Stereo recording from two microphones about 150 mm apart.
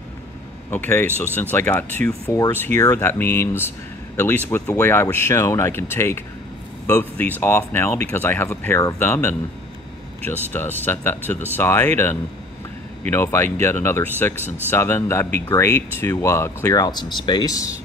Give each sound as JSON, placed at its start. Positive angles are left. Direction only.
{"t": 0.7, "sound": "speech", "side_deg": 15}
{"t": 10.5, "sound": "speech", "side_deg": 15}